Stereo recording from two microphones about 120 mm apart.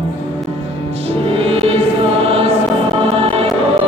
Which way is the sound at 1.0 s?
55° right (ahead or behind).